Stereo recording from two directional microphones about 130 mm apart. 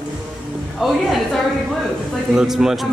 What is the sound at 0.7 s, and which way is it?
A man's voice, centre (ahead or behind).